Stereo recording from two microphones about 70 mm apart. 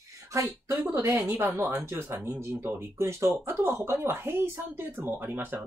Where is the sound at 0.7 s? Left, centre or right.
Right.